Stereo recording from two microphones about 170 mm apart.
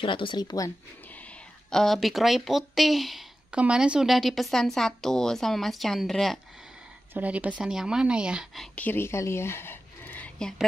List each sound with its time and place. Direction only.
0.0 s speech: 30° left (ahead or behind)
1.1 s speech: 5° left (ahead or behind)
8.7 s speech: 10° left (ahead or behind)